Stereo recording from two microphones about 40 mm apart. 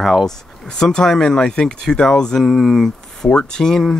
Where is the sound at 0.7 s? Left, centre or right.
Centre.